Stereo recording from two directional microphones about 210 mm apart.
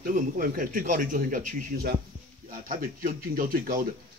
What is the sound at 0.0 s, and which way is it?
A man's voice, 40° right (ahead or behind).